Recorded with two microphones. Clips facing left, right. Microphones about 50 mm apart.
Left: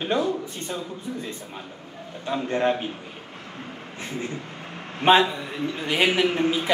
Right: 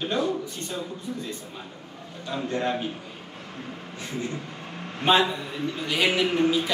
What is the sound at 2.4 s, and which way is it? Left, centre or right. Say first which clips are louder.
Speech: left 4 dB; left.